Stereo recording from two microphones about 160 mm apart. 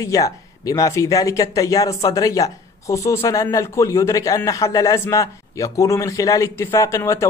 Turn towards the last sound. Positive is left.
turn(degrees=20)  # may be behind; listen again after turning